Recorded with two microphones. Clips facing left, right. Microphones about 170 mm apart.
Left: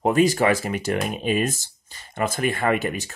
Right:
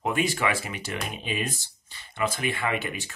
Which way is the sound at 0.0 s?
40° left (ahead or behind).